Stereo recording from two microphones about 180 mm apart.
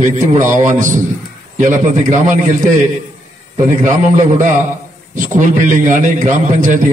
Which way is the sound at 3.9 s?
45° right (ahead or behind).